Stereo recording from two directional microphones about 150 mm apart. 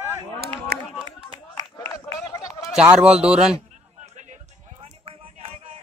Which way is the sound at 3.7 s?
55° right (ahead or behind).